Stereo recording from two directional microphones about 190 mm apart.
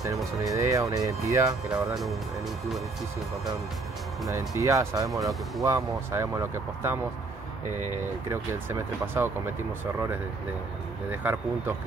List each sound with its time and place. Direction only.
0.4 s speech: 15° right (ahead or behind)
4.3 s speech: 15° right (ahead or behind)
8.3 s speech: 15° right (ahead or behind)
11.1 s speech: 10° right (ahead or behind)